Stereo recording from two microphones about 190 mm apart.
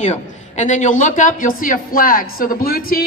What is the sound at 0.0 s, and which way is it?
A woman's voice, 35° left (ahead or behind).